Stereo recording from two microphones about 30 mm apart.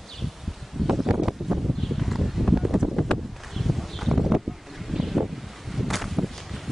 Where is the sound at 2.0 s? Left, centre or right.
Centre.